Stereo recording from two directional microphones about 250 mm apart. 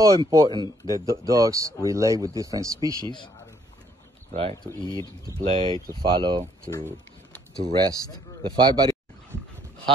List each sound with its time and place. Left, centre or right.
0.0 s speech: centre
0.5 s a man's voice: centre
1.3 s speech: centre
3.0 s a man's voice: centre
4.3 s speech: right
4.8 s speech: centre
8.4 s a sound: centre